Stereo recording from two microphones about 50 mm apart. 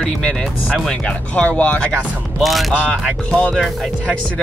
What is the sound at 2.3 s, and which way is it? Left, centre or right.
Speech, centre.